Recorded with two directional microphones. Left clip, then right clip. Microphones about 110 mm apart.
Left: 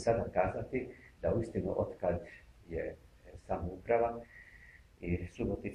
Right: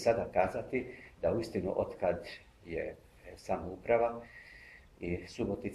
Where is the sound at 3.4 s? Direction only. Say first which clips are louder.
Right 2 dB; 40° right (ahead or behind).